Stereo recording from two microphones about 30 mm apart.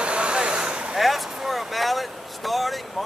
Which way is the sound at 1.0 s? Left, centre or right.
Centre.